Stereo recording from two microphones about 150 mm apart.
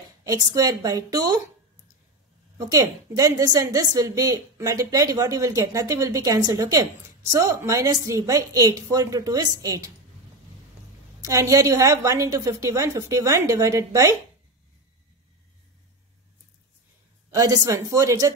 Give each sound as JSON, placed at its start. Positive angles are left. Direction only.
{"t": 0.2, "sound": "a woman's voice", "side_deg": -20}
{"t": 2.5, "sound": "a woman's voice", "side_deg": -20}
{"t": 11.2, "sound": "a woman's voice", "side_deg": -20}
{"t": 17.3, "sound": "a woman's voice", "side_deg": -20}